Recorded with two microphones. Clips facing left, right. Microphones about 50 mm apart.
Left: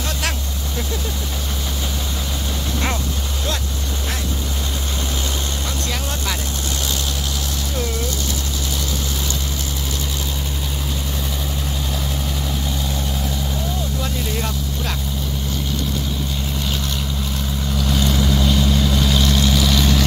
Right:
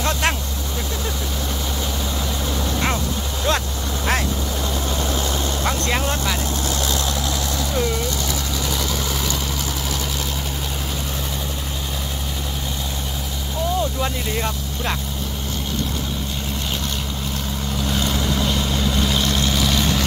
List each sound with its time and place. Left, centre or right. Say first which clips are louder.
14.0 s vehicle: right 1 dB; right
17.7 s vehicle: left 2 dB; right
18.0 s vehicle: left 4 dB; centre